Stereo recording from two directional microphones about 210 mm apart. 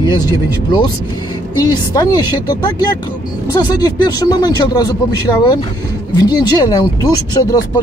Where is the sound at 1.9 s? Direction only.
20° left (ahead or behind).